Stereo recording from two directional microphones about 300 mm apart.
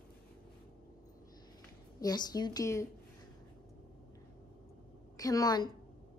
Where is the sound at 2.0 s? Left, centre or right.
Centre.